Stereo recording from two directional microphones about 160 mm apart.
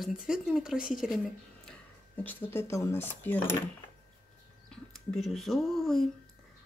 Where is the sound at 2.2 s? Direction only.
10° left (ahead or behind).